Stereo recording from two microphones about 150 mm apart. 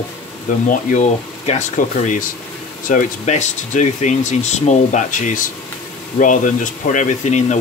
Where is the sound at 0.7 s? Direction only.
50° left (ahead or behind).